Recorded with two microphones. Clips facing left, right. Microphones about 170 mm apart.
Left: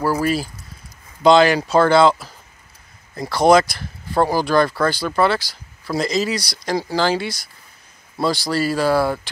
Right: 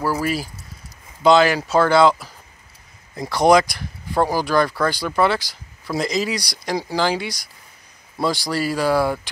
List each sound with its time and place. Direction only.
0.2 s speech: 10° right (ahead or behind)
3.2 s speech: 15° right (ahead or behind)